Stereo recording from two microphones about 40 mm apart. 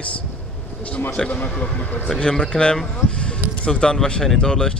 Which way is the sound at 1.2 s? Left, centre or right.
Left.